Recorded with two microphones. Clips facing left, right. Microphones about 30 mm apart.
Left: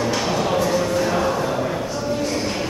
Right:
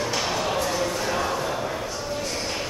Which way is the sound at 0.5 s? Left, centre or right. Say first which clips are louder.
Left 5 dB; centre.